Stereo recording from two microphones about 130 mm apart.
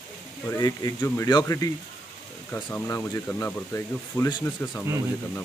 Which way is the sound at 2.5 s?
15° left (ahead or behind).